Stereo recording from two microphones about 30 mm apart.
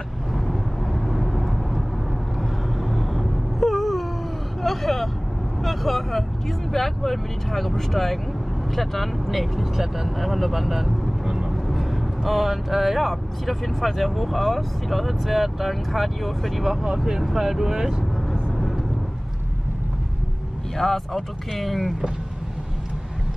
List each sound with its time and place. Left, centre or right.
0.3 s vehicle: centre
2.8 s a sound: centre
4.6 s vehicle: centre
6.7 s speech: centre
11.5 s vehicle: centre
13.1 s speech: centre
16.8 s speech: centre
20.7 s speech: centre